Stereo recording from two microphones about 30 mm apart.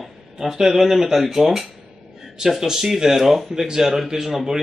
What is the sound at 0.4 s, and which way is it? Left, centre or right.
Speech, centre.